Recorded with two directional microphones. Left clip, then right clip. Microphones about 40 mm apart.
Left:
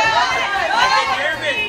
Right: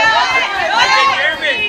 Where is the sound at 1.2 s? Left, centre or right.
Right.